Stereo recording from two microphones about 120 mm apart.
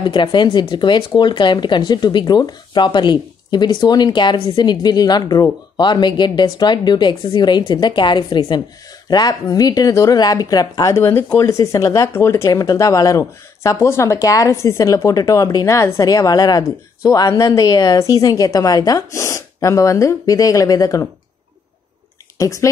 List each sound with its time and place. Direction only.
0.1 s speech: 40° left (ahead or behind)
22.4 s speech: 25° left (ahead or behind)